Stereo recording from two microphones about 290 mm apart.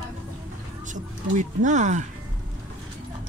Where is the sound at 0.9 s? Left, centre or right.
Right.